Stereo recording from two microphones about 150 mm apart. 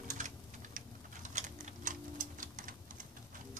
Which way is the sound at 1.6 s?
60° right (ahead or behind).